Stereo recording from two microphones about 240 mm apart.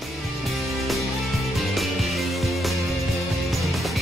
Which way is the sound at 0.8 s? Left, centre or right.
Centre.